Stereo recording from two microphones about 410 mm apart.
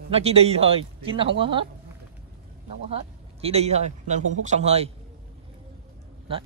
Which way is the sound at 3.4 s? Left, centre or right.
Centre.